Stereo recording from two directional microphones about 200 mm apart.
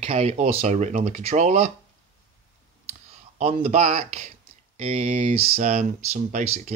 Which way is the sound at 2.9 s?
40° right (ahead or behind).